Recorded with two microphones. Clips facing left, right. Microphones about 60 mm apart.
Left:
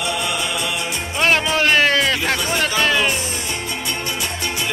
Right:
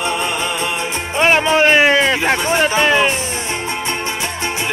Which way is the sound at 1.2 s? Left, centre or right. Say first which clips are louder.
Right 4 dB; right.